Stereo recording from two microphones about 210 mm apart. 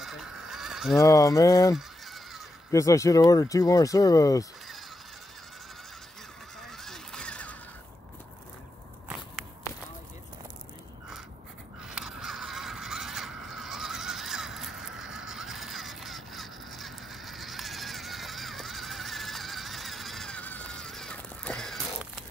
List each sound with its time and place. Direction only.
0.0 s honk: centre (ahead or behind)
0.9 s speech: 15° left (ahead or behind)
1.8 s honk: centre (ahead or behind)
2.7 s speech: 15° left (ahead or behind)
6.8 s a sound: centre (ahead or behind)
11.9 s a sound: 5° right (ahead or behind)